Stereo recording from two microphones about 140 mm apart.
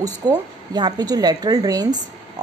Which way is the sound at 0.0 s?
30° right (ahead or behind).